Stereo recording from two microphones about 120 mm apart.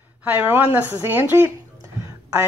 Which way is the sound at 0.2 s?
10° right (ahead or behind).